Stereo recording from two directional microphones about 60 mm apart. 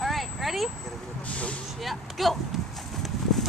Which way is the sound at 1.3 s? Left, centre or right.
Left.